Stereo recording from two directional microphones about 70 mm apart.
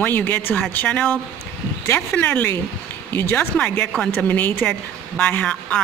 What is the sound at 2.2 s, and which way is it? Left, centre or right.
Speech, left.